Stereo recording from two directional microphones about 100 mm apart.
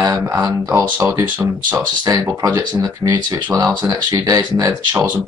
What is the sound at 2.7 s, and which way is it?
Speech, 45° right (ahead or behind).